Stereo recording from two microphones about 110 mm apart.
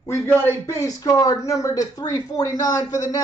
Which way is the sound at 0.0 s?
25° left (ahead or behind).